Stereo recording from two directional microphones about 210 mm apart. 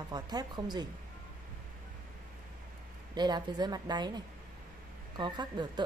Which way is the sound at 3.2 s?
20° right (ahead or behind).